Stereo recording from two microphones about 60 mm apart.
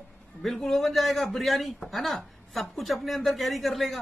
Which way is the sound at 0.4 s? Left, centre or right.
Centre.